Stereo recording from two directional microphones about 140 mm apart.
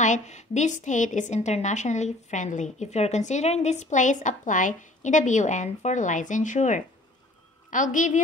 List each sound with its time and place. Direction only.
0.0 s a woman's voice: 60° left (ahead or behind)